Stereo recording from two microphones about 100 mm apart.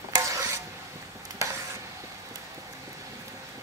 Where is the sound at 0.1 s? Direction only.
35° right (ahead or behind).